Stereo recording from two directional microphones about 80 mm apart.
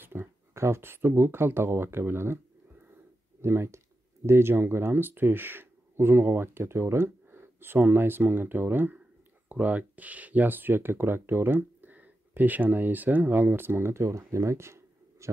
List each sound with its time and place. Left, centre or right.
0.0 s speech: right